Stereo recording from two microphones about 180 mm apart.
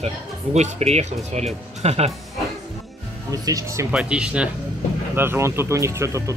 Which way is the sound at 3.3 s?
20° right (ahead or behind).